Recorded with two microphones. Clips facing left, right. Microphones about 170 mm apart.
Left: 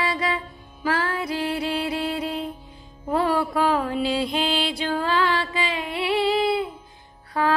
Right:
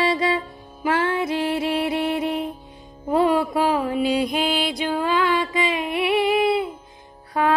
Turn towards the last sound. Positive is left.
turn(degrees=-20)  # may be behind; listen again after turning